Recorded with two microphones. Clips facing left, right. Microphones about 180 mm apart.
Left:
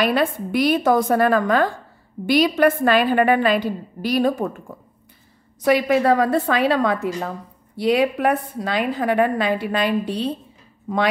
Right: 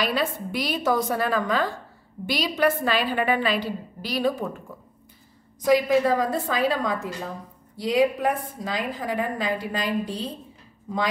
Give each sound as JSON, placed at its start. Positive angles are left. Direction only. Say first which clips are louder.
{"t": 0.0, "sound": "a woman's voice", "louder": "left 6 dB", "side_deg": 55}
{"t": 5.7, "sound": "a woman's voice", "louder": "left 3 dB", "side_deg": 70}